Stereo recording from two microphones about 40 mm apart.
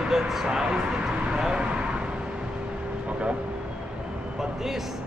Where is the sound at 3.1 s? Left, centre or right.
Right.